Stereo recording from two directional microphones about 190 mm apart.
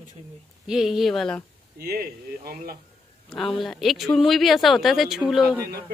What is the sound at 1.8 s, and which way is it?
Speech, 55° right (ahead or behind).